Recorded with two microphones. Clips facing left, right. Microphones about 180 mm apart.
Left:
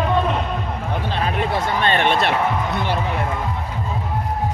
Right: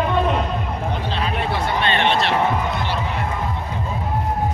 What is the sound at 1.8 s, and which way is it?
Basketball bounce, 50° left (ahead or behind).